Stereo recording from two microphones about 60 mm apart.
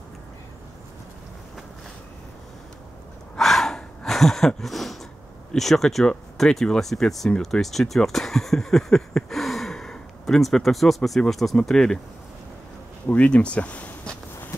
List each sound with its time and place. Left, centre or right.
3.3 s gasp: centre
5.5 s speech: centre
13.1 s a sound: centre